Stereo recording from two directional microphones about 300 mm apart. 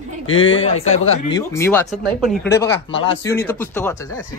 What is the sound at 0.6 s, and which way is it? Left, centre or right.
Speech, left.